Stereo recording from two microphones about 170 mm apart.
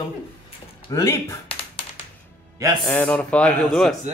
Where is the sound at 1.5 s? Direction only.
35° left (ahead or behind).